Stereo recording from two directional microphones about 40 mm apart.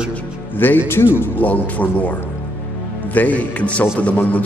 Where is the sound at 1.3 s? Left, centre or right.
Left.